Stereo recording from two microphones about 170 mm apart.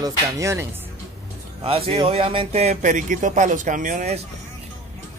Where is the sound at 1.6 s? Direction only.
35° right (ahead or behind).